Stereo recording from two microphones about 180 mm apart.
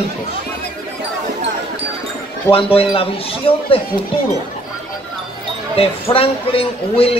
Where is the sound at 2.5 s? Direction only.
30° left (ahead or behind).